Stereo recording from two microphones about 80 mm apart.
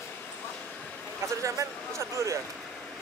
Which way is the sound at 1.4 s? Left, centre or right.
Right.